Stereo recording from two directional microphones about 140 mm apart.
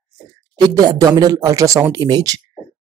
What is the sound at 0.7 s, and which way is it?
Speech, 25° right (ahead or behind).